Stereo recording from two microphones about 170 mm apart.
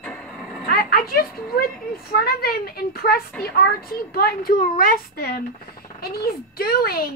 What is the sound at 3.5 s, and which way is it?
A child's voice, 65° left (ahead or behind).